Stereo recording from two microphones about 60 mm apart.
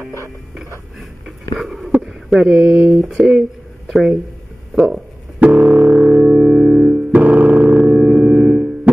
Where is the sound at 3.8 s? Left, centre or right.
Centre.